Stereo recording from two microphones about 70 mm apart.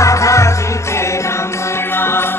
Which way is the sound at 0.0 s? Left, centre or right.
Left.